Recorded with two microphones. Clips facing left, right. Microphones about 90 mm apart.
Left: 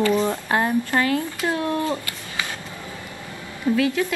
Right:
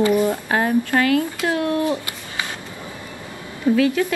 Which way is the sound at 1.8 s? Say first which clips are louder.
Right 3 dB; 15° right (ahead or behind).